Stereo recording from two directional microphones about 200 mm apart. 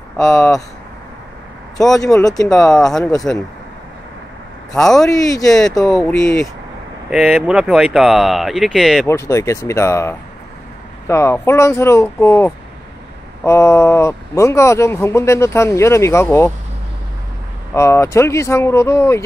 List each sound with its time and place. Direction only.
0.2 s speech: 15° left (ahead or behind)
1.8 s speech: 15° left (ahead or behind)
2.4 s speech: centre (ahead or behind)
3.0 s speech: 20° left (ahead or behind)
4.7 s speech: centre (ahead or behind)
5.1 s speech: 15° left (ahead or behind)
5.8 s speech: centre (ahead or behind)
9.0 s speech: 15° left (ahead or behind)
17.7 s speech: 15° left (ahead or behind)